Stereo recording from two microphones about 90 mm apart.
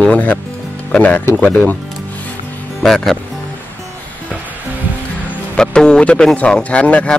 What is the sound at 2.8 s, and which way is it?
Speech, 5° left (ahead or behind).